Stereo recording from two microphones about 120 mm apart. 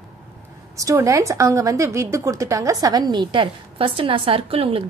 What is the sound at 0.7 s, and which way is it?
A woman's voice, 25° right (ahead or behind).